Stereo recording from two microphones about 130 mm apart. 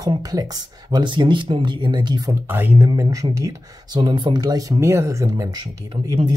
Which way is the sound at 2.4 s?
15° right (ahead or behind).